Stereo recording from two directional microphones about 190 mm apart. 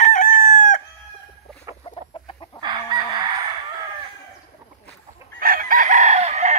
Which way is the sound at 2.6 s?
25° right (ahead or behind).